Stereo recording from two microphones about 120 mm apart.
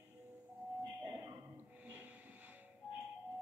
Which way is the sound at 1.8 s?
15° right (ahead or behind).